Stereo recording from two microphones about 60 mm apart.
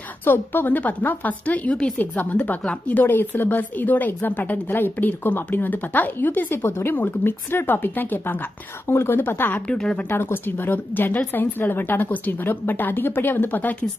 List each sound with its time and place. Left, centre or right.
0.2 s a woman's voice: left
8.8 s a woman's voice: left
9.7 s a woman's voice: centre
10.0 s a woman's voice: left